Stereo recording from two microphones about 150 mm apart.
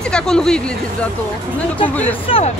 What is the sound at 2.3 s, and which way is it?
Speech, 40° left (ahead or behind).